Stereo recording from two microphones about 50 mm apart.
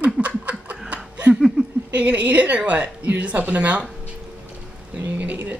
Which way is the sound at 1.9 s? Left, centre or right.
Right.